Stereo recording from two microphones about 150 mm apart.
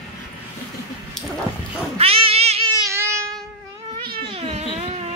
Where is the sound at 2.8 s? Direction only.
20° right (ahead or behind).